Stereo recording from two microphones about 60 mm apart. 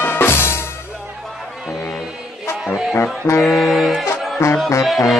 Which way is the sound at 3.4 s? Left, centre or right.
Centre.